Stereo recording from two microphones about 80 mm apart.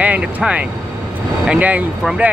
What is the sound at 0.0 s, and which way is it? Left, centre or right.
Speech, centre.